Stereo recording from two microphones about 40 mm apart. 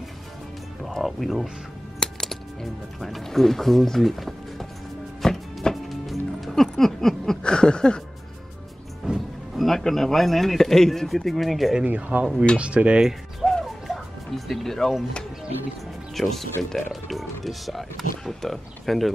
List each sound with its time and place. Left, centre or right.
1.0 s speech: centre
2.0 s music: centre
2.6 s speech: centre
5.2 s music: centre
6.8 s a sound: centre
7.4 s a sound: left
9.0 s music: centre
9.6 s speech: centre
11.8 s speech: right
13.4 s music: centre
16.2 s speech: centre